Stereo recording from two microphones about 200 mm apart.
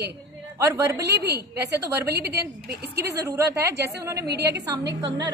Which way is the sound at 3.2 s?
15° right (ahead or behind).